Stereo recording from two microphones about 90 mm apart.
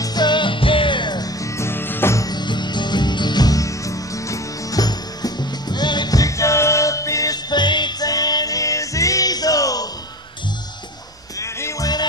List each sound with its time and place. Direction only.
0.0 s music: 50° left (ahead or behind)
1.4 s music: 30° left (ahead or behind)
2.1 s music: 50° left (ahead or behind)
11.3 s music: 35° left (ahead or behind)